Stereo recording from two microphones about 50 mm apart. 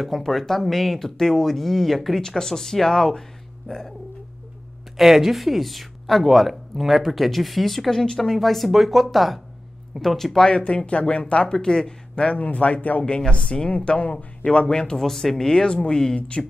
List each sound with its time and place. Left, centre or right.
0.0 s speech: centre
4.9 s speech: centre
10.5 s speech: left
12.4 s speech: left
13.0 s speech: centre
15.0 s speech: centre; by 16.4 s left